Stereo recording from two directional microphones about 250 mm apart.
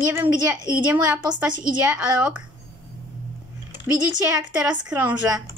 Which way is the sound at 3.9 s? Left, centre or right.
Centre.